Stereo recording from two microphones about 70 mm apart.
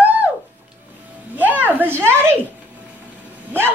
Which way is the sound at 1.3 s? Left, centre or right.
Right.